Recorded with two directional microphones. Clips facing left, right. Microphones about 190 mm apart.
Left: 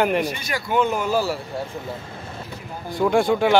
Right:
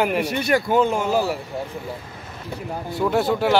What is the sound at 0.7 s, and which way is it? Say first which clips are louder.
Speech: left 3 dB; 30° right (ahead or behind).